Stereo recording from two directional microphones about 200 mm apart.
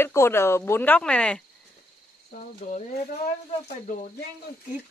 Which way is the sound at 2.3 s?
40° left (ahead or behind).